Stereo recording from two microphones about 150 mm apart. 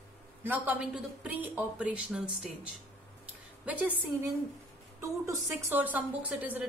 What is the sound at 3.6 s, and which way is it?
Speech, 10° right (ahead or behind).